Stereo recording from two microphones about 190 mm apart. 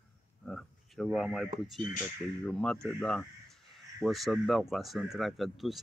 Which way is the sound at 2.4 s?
5° left (ahead or behind).